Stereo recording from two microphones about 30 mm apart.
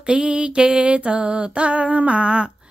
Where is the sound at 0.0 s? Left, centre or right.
Right.